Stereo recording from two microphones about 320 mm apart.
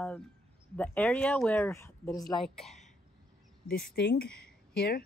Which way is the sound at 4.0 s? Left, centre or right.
Left.